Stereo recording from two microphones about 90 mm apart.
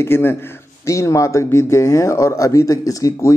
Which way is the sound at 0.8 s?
35° left (ahead or behind).